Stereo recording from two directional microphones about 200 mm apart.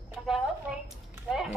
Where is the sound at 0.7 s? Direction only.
Centre (ahead or behind).